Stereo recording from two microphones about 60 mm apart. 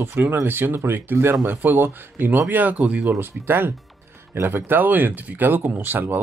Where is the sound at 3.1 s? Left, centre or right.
Right.